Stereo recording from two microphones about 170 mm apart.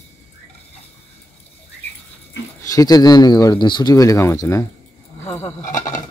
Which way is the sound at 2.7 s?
20° left (ahead or behind).